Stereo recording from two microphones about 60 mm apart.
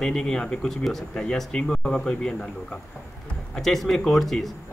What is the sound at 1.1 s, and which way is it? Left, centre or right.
Speech, centre.